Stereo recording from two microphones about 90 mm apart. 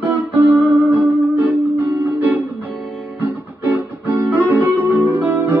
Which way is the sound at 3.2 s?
20° right (ahead or behind).